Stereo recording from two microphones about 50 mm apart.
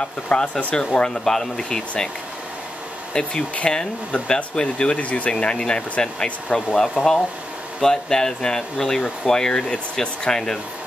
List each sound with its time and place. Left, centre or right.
0.3 s speech: left
3.1 s hair dryer: centre
3.5 s speech: left
4.9 s speech: left; by 10.6 s centre